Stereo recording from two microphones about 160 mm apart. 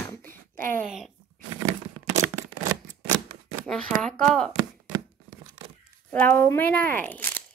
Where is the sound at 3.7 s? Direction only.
5° left (ahead or behind).